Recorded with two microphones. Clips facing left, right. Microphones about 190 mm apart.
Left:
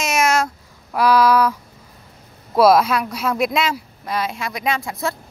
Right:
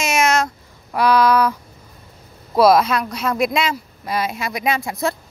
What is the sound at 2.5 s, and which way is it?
Speech, 5° left (ahead or behind).